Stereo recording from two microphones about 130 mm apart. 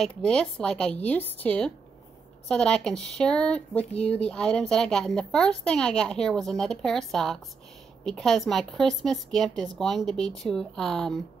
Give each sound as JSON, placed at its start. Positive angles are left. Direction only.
{"t": 0.0, "sound": "a woman's voice", "side_deg": 5}